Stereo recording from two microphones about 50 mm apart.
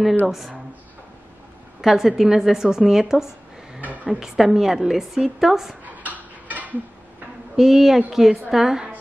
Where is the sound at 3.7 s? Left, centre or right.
Right.